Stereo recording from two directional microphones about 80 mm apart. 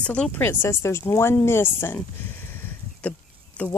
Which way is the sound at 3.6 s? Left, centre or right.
Centre.